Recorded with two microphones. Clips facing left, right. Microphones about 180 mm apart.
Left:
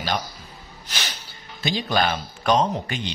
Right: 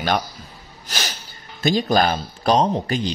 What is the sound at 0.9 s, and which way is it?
Snort, 45° right (ahead or behind).